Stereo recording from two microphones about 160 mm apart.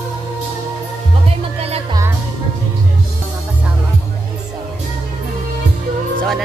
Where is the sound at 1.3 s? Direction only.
40° right (ahead or behind).